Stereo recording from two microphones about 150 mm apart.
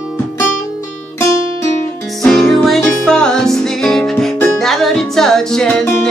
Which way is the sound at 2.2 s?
Centre (ahead or behind).